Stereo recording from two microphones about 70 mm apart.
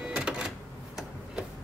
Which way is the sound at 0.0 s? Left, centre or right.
Centre.